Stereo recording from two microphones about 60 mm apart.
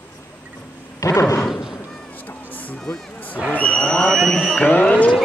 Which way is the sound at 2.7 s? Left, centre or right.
Centre.